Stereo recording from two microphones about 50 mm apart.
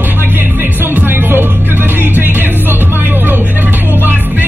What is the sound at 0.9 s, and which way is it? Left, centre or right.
Music, right.